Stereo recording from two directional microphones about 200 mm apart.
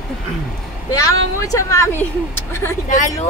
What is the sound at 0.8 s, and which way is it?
Speech, 15° left (ahead or behind).